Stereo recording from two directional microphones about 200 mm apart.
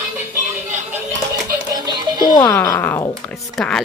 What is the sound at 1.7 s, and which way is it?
Music, 20° right (ahead or behind).